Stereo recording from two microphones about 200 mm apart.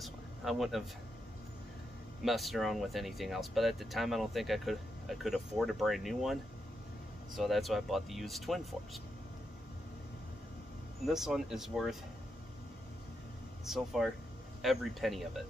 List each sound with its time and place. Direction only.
0.0 s a sound: centre (ahead or behind)
2.2 s speech: centre (ahead or behind)
7.3 s speech: centre (ahead or behind)
11.1 s speech: centre (ahead or behind)
13.7 s speech: centre (ahead or behind)